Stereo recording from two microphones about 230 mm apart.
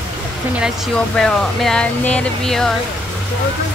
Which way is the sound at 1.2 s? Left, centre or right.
Centre.